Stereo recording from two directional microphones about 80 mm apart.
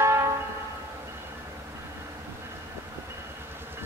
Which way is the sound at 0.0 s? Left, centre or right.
Right.